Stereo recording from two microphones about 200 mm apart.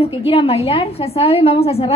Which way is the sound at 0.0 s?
30° left (ahead or behind).